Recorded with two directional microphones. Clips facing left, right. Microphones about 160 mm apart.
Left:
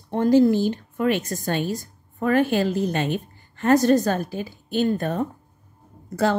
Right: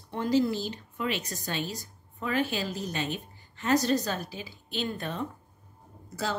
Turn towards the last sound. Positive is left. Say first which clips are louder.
# left 11 dB
turn(degrees=55)  # may be behind; listen again after turning